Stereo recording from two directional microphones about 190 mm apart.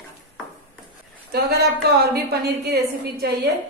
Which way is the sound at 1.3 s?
55° right (ahead or behind).